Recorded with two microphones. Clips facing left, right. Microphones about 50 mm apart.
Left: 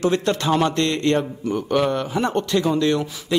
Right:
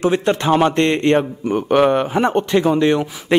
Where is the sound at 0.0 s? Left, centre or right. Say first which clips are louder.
Right 3 dB; right.